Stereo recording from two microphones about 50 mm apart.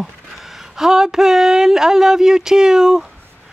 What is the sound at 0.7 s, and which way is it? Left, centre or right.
Speech, centre.